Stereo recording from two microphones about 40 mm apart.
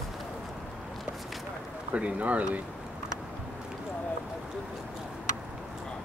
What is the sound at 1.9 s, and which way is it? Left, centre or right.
Speech, right.